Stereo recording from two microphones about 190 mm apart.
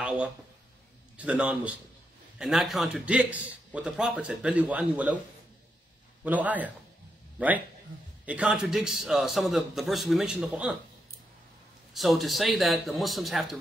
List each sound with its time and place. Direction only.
1.1 s a man's voice: 5° right (ahead or behind)
6.2 s a man's voice: 10° right (ahead or behind)
11.9 s a man's voice: centre (ahead or behind)